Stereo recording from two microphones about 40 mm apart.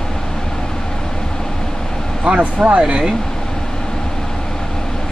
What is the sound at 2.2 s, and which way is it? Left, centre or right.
Speech, right.